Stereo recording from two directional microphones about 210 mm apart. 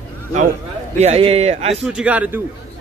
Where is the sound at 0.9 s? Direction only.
30° right (ahead or behind).